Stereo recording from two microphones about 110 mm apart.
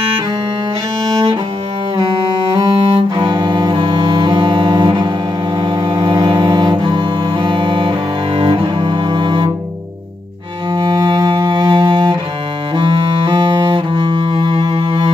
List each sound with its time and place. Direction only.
2.7 s music: 50° right (ahead or behind)
8.4 s cello: 45° right (ahead or behind)
10.7 s cello: 40° right (ahead or behind)
11.3 s music: 40° right (ahead or behind)
13.7 s cello: 50° right (ahead or behind)